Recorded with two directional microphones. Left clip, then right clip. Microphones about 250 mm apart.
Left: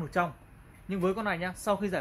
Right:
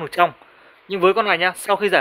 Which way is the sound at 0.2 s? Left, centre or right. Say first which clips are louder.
Right 12 dB; right.